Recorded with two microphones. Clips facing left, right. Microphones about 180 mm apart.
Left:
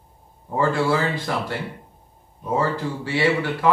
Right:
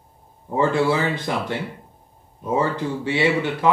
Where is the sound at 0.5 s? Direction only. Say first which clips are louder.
Right 1 dB; 20° right (ahead or behind).